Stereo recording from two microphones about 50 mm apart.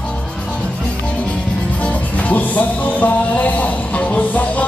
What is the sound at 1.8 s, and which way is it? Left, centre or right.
Music, left.